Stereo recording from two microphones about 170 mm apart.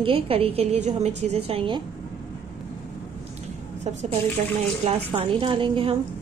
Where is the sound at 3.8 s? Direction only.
45° right (ahead or behind).